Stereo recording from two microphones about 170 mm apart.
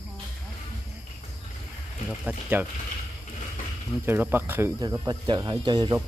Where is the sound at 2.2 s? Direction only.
10° right (ahead or behind).